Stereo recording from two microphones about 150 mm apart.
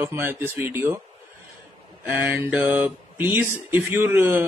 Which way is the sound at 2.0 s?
15° right (ahead or behind).